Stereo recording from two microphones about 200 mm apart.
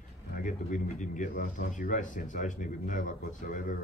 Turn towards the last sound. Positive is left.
turn(degrees=40)  # may be behind; listen again after turning